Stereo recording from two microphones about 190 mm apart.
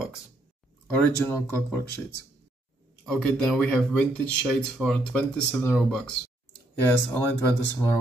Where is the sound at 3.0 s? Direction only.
Centre (ahead or behind).